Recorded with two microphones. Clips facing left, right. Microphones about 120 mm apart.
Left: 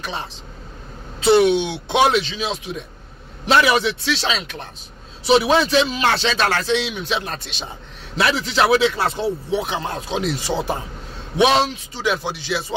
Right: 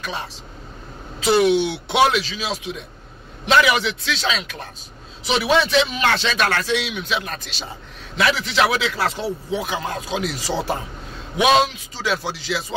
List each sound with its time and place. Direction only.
0.0 s a man's voice: 25° left (ahead or behind)
11.3 s a man's voice: 30° left (ahead or behind)